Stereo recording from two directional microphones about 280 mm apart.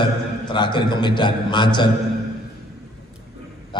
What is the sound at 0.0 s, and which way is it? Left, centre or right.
A man's voice, centre.